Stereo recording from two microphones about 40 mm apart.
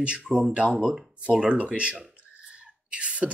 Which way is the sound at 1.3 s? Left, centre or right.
Right.